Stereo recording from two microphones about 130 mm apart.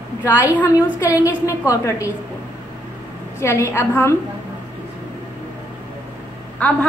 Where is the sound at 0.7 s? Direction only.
25° left (ahead or behind).